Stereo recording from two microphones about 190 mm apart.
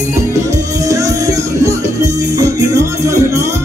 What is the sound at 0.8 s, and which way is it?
Music, 15° right (ahead or behind).